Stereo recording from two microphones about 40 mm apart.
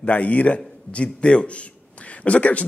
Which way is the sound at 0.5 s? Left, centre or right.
Left.